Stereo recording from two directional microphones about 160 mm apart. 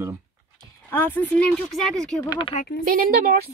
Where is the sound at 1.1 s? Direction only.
5° left (ahead or behind).